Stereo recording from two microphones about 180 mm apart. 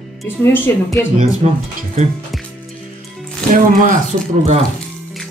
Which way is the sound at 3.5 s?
45° right (ahead or behind).